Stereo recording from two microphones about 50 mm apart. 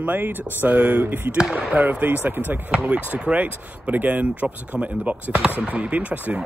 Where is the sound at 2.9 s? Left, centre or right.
Right.